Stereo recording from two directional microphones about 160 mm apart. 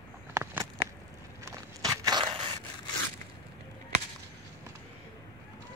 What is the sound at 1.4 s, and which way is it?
Walk, 20° right (ahead or behind).